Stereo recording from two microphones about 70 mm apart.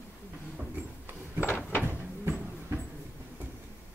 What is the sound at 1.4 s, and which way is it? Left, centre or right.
Cupboard open or close, left.